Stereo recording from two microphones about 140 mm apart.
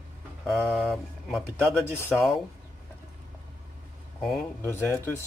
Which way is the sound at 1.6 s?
10° left (ahead or behind).